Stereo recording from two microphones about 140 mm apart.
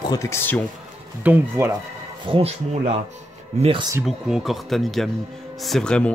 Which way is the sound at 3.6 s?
40° right (ahead or behind).